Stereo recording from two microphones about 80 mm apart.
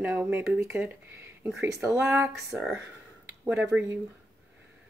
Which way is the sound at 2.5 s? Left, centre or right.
Centre.